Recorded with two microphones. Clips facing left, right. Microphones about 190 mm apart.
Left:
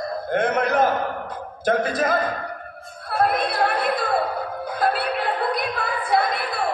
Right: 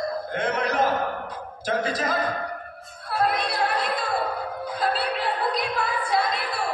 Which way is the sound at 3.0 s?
55° left (ahead or behind).